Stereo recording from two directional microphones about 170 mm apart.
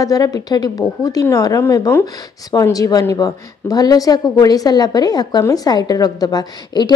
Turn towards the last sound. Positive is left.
turn(degrees=25)  # may be behind; listen again after turning